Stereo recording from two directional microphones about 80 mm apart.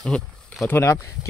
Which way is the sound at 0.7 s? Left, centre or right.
Left.